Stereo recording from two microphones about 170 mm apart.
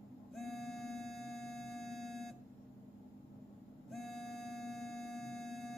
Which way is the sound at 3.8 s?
Centre (ahead or behind).